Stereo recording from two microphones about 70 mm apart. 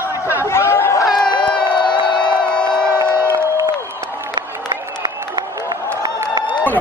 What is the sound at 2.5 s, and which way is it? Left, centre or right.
Crowd, centre.